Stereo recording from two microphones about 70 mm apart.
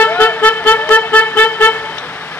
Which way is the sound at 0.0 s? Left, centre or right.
Left.